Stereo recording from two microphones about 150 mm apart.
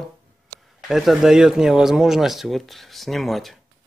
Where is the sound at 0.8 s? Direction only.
Centre (ahead or behind).